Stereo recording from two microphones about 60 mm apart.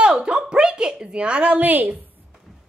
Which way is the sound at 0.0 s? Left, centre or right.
Centre.